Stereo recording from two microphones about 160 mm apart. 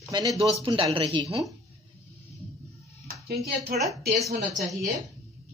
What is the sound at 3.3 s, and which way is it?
Speech, 75° right (ahead or behind).